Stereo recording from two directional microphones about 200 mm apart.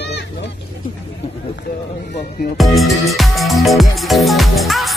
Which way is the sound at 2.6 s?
Centre (ahead or behind).